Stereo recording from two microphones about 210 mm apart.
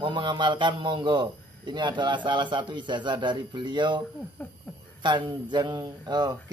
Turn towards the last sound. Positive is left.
turn(degrees=-20)  # may be behind; listen again after turning